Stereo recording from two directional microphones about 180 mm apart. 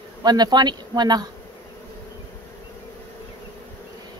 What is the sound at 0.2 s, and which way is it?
Speech, 20° right (ahead or behind).